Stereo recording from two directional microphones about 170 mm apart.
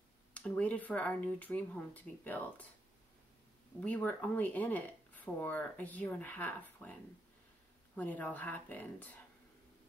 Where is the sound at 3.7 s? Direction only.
10° left (ahead or behind).